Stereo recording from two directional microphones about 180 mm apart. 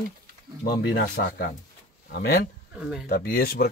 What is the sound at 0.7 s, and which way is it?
A man's voice, 60° left (ahead or behind).